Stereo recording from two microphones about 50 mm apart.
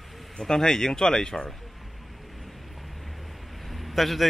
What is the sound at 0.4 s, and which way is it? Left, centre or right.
Speech, centre.